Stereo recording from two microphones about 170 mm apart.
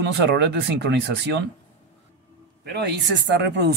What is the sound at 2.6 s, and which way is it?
Speech, 75° right (ahead or behind).